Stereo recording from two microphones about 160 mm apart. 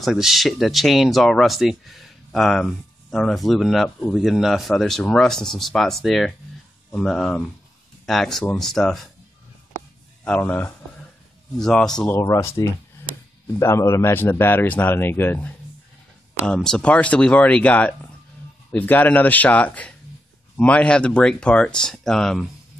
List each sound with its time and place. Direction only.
0.0 s speech: centre (ahead or behind)
10.2 s speech: 10° left (ahead or behind)
12.2 s speech: 20° left (ahead or behind)